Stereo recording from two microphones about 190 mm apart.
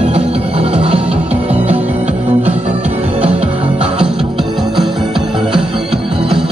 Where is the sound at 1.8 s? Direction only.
10° right (ahead or behind).